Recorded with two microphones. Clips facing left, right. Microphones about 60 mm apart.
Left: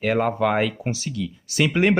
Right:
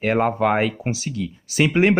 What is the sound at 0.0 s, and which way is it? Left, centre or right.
Speech, right.